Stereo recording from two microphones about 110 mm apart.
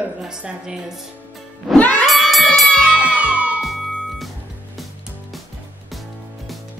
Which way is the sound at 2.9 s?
10° right (ahead or behind).